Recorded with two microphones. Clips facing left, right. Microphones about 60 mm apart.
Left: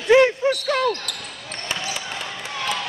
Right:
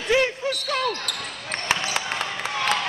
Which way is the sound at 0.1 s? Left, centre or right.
Left.